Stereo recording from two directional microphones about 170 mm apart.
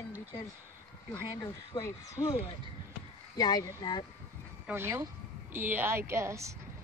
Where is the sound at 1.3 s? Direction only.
20° left (ahead or behind).